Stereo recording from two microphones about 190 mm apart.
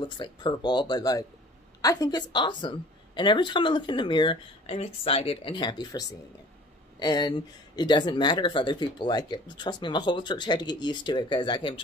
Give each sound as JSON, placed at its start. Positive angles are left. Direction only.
{"t": 0.0, "sound": "speech", "side_deg": 25}